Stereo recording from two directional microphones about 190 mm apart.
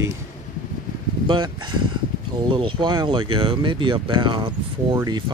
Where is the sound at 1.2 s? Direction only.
25° right (ahead or behind).